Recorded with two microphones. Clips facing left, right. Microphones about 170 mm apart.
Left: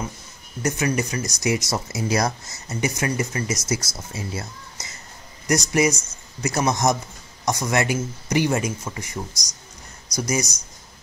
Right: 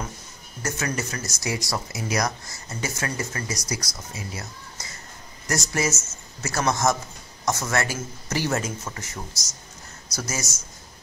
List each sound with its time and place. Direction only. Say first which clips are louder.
0.6 s speech: left 6 dB; 15° left (ahead or behind)
5.7 s speech: left 6 dB; 15° left (ahead or behind)